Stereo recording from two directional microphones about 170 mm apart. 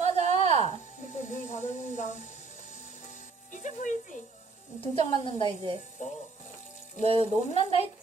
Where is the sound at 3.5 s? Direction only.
45° left (ahead or behind).